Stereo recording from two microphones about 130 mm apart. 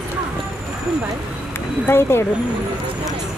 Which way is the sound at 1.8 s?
20° left (ahead or behind).